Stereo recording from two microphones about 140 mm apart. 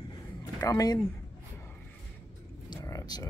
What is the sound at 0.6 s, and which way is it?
Speech, 25° left (ahead or behind).